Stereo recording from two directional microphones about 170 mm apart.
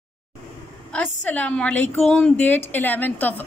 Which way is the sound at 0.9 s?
10° left (ahead or behind).